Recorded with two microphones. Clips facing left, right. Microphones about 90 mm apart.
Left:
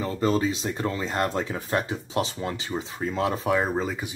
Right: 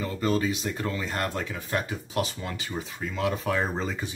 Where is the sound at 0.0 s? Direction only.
30° left (ahead or behind).